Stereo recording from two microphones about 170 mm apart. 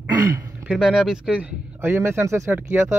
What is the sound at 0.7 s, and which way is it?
Speech, 5° right (ahead or behind).